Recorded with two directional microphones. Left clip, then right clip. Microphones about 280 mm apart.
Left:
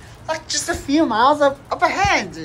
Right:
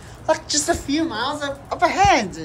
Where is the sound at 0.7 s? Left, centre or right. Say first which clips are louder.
Left 6 dB; centre.